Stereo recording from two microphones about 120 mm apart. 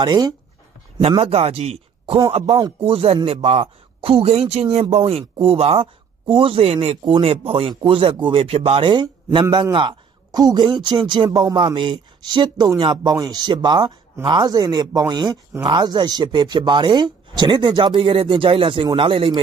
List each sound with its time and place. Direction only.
0.0 s speech: 40° right (ahead or behind)
1.0 s a man's voice: 55° right (ahead or behind)